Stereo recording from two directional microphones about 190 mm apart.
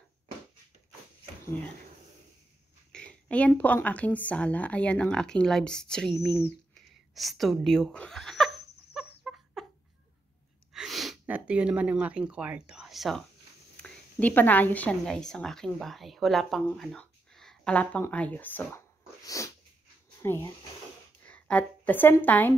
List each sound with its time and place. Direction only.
2.9 s speech: 5° left (ahead or behind)
7.2 s speech: centre (ahead or behind)
8.9 s chicken: 5° right (ahead or behind)
10.7 s a woman's voice: centre (ahead or behind)
19.2 s sneeze: 15° left (ahead or behind)
20.2 s a woman's voice: 15° left (ahead or behind)